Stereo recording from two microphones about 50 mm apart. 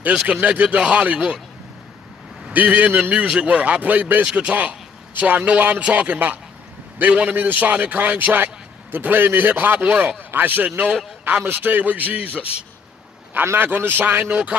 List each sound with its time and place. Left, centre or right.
0.0 s speech: right
2.5 s a man's voice: right
3.2 s speech: right
7.2 s speech: right
13.6 s a man's voice: right
14.3 s speech: right